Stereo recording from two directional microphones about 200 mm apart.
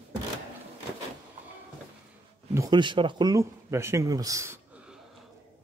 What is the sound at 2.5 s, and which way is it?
Speech, 20° right (ahead or behind).